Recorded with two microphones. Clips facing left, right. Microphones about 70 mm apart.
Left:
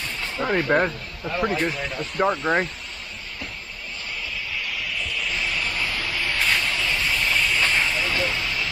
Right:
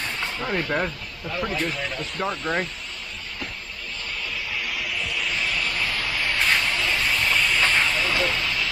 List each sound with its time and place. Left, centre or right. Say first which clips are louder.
0.4 s speech: left 6 dB; centre
1.7 s speech: left 1 dB; centre
2.1 s speech: left 7 dB; centre
4.6 s vehicle: right 1 dB; centre